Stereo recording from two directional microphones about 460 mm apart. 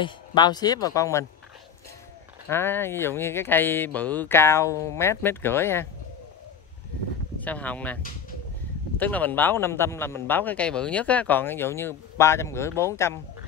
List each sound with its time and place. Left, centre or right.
0.0 s speech: centre
2.5 s speech: centre
7.4 s speech: centre